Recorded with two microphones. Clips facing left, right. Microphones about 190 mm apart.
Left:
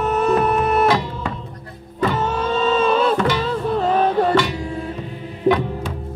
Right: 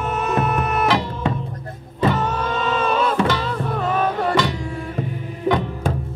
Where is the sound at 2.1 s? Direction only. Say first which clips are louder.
Left 2 dB; 25° left (ahead or behind).